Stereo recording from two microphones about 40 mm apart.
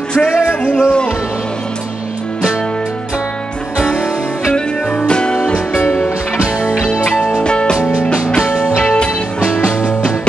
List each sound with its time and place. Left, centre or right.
0.7 s music: left
3.7 s music: right
5.0 s music: left
6.3 s music: right
7.4 s music: left